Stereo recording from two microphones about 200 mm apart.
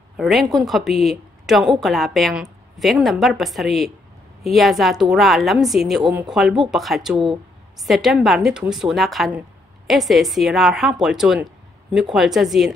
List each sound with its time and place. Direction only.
0.2 s a woman's voice: centre (ahead or behind)